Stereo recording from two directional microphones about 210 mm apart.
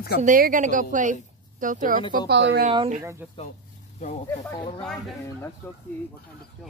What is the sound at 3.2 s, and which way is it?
Speech, 5° right (ahead or behind).